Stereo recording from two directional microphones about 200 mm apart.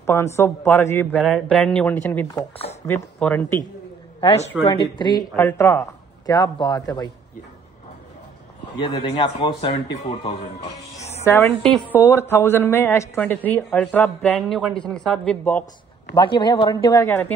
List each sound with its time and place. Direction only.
0.0 s a woman's voice: 15° left (ahead or behind)
4.6 s speech: 5° right (ahead or behind)
4.9 s speech: 20° left (ahead or behind)
5.3 s a woman's voice: 10° left (ahead or behind)
8.8 s speech: 20° left (ahead or behind)
11.1 s a woman's voice: 10° left (ahead or behind)
16.2 s speech: 25° left (ahead or behind)